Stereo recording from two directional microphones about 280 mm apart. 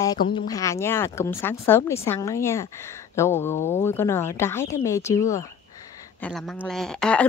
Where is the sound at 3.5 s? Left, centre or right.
Left.